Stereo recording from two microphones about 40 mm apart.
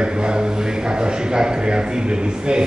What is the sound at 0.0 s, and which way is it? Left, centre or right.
A man's voice, right.